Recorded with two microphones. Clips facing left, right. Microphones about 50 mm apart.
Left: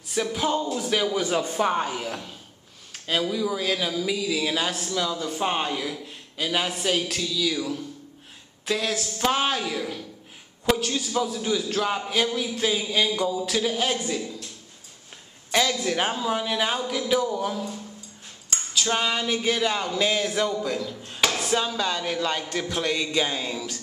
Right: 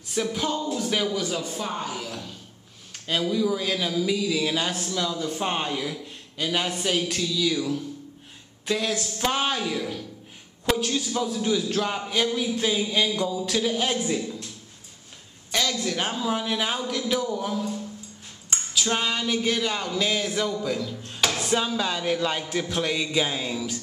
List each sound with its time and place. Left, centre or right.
0.1 s speech: centre
0.5 s speech: centre
0.7 s speech: centre
1.1 s a man's voice: left
2.9 s speech: centre
15.5 s speech: centre
18.7 s a sound: centre
21.5 s speech: centre